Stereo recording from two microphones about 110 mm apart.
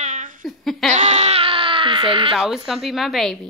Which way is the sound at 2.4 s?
5° right (ahead or behind).